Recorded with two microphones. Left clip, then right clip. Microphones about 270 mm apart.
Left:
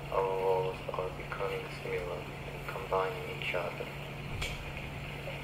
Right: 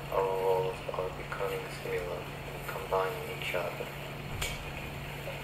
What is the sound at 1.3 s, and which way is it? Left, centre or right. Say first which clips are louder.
Speech: right 1 dB; centre.